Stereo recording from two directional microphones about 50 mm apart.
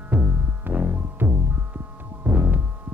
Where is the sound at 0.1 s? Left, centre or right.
Right.